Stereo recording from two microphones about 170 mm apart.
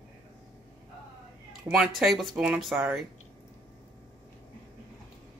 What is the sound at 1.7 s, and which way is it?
Speech, centre (ahead or behind).